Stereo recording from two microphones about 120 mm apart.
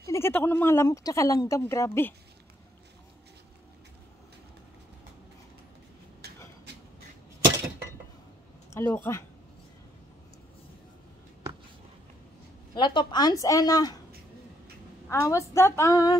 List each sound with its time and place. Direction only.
0.0 s speech: 20° left (ahead or behind)
8.6 s speech: 20° left (ahead or behind)
12.7 s a woman's voice: 40° left (ahead or behind)
15.0 s speech: 25° left (ahead or behind)